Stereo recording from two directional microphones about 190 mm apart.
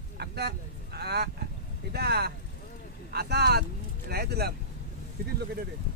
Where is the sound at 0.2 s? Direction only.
60° right (ahead or behind).